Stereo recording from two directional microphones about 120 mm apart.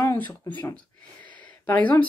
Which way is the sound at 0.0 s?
15° left (ahead or behind).